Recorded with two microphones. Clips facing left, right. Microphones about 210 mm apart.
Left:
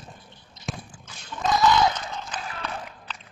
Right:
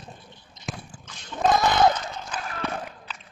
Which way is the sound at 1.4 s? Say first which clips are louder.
Right 1 dB; 55° right (ahead or behind).